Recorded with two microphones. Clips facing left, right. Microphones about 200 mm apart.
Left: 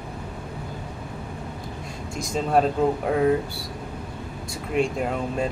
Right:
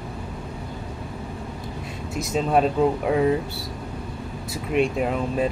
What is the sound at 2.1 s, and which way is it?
Speech, 5° right (ahead or behind).